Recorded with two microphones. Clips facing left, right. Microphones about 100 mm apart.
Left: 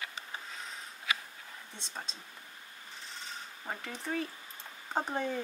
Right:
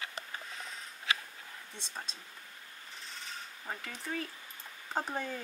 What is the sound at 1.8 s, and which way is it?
Speech, 5° right (ahead or behind).